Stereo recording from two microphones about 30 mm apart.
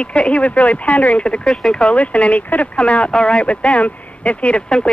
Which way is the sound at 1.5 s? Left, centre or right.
Centre.